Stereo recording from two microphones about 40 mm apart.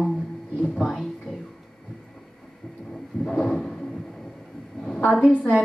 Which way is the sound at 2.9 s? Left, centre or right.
Centre.